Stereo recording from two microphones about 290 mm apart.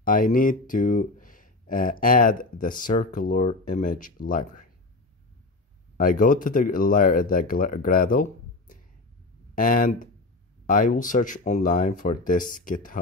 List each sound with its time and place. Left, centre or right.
0.0 s speech: left
5.9 s speech: left